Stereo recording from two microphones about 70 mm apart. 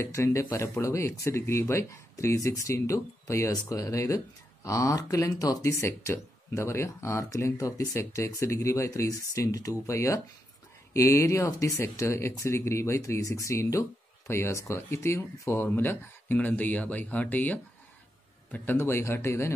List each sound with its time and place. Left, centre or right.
0.1 s speech: left